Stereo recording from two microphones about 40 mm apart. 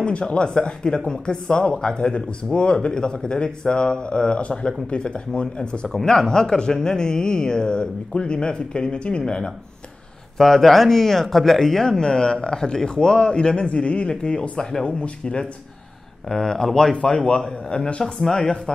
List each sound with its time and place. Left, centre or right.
0.0 s speech: left
6.0 s speech: centre
10.3 s speech: centre
12.0 s speech: centre
14.6 s speech: centre
14.9 s speech: left
16.3 s speech: centre
16.9 s speech: left